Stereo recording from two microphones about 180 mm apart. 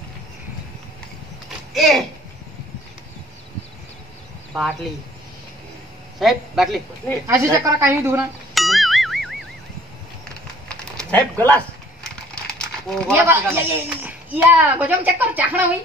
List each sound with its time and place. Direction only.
1.7 s speech: centre (ahead or behind)
6.1 s a man's voice: centre (ahead or behind)
7.2 s a woman's voice: 15° right (ahead or behind)
8.5 s music: centre (ahead or behind)
10.7 s a sound: 5° left (ahead or behind)
13.1 s a woman's voice: 15° right (ahead or behind)